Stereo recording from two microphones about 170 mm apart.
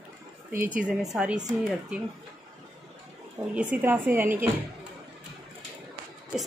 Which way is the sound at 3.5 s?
10° right (ahead or behind).